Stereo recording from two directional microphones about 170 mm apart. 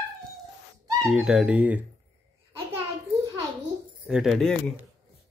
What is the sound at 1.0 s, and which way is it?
Speech, centre (ahead or behind).